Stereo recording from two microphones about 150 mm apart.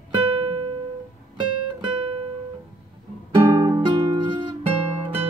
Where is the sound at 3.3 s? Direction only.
30° right (ahead or behind).